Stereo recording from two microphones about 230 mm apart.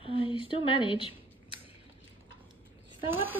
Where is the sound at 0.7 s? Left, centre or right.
Left.